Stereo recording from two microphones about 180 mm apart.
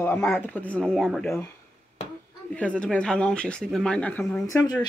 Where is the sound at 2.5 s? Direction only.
5° left (ahead or behind).